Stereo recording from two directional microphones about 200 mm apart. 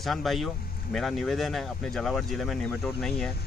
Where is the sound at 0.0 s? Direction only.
Centre (ahead or behind).